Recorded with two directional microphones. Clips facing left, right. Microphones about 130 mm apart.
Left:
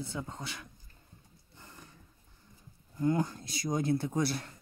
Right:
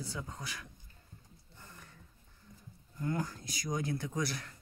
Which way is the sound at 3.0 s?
25° left (ahead or behind).